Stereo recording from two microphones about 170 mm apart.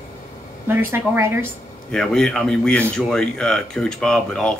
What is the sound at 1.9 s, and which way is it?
Speech, 5° left (ahead or behind).